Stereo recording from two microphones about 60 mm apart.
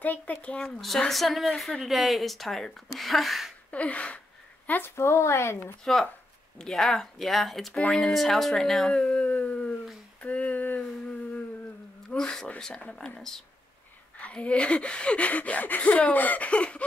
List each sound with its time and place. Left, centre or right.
0.0 s speech: left; by 3.5 s centre
3.7 s a woman's voice: left
4.9 s speech: left
5.9 s speech: centre
7.8 s speech: centre
8.1 s speech: centre; by 9.8 s left
10.2 s a sound: left
12.2 s speech: centre